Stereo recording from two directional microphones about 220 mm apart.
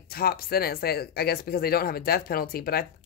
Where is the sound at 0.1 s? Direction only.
45° left (ahead or behind).